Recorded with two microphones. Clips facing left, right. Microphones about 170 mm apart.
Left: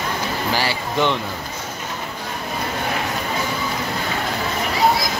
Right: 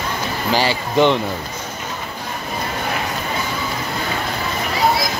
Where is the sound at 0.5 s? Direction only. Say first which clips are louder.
Right 7 dB; 20° right (ahead or behind).